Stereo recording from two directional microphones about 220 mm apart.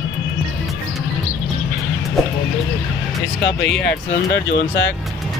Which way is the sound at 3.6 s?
50° left (ahead or behind).